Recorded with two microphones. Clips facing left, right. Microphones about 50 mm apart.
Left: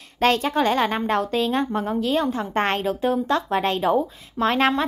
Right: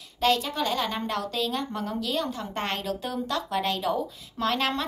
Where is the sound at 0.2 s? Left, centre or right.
Left.